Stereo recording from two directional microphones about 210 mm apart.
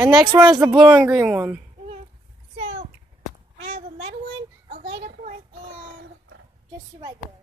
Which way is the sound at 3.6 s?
30° right (ahead or behind).